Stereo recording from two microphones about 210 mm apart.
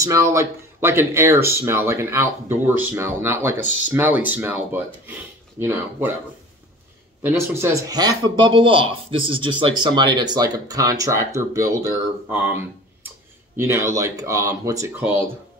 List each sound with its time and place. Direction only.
0.0 s speech: 15° right (ahead or behind)
7.2 s speech: 10° right (ahead or behind)
13.6 s speech: 10° right (ahead or behind)